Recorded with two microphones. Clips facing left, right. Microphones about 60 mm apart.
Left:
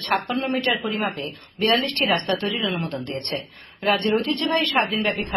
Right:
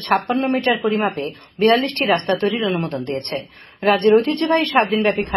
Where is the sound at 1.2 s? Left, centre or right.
Right.